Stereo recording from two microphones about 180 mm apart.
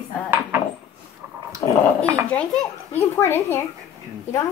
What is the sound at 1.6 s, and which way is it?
Dog, 20° left (ahead or behind).